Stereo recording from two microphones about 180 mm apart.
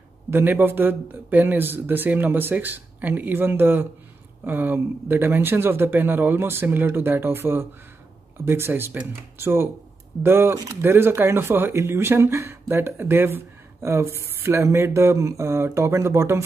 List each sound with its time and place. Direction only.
0.3 s speech: 10° right (ahead or behind)